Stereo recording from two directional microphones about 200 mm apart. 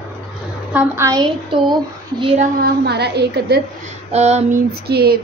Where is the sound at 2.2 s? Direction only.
35° right (ahead or behind).